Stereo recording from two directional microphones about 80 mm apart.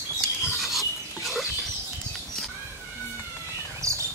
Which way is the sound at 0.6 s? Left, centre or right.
Centre.